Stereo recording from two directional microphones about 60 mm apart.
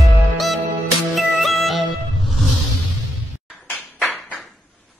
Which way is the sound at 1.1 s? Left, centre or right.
Centre.